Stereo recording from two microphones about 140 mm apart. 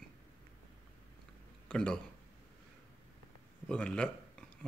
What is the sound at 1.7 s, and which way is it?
Speech, 5° left (ahead or behind).